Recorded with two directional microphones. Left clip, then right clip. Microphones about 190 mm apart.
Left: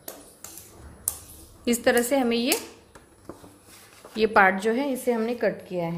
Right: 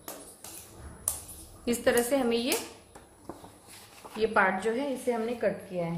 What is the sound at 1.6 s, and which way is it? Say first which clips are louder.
Speech: left 4 dB; 35° left (ahead or behind).